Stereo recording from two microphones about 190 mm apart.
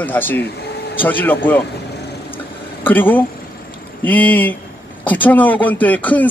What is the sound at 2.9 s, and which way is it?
A man's voice, 10° left (ahead or behind).